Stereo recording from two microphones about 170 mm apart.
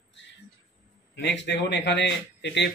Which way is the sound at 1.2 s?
90° left.